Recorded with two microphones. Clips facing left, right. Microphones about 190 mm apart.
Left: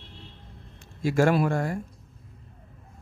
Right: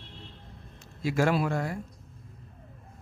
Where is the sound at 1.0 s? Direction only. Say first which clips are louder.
Left 4 dB; 50° left (ahead or behind).